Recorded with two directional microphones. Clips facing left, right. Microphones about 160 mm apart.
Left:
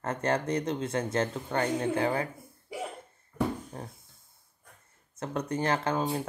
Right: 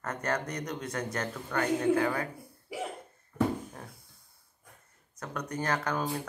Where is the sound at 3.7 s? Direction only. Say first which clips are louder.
Left 4 dB; 25° left (ahead or behind).